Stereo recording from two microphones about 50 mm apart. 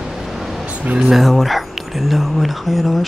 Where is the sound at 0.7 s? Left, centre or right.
Right.